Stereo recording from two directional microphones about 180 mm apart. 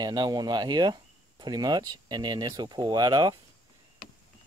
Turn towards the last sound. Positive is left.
turn(degrees=-20)  # may be behind; listen again after turning